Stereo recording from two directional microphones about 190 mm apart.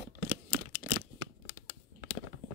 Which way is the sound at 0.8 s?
30° left (ahead or behind).